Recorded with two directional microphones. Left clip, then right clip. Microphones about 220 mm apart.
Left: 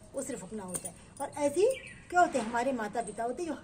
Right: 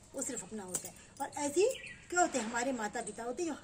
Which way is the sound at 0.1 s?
15° right (ahead or behind).